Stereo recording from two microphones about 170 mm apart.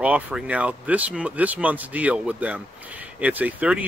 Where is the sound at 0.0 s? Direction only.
10° right (ahead or behind).